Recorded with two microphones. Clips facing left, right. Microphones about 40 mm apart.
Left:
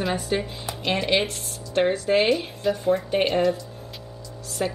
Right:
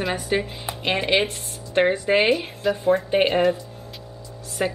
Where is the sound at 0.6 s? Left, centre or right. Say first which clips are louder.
Even; right.